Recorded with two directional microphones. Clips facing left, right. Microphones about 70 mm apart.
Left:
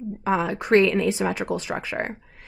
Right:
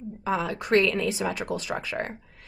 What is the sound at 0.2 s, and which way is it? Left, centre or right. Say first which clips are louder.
A woman's voice: left 4 dB; left.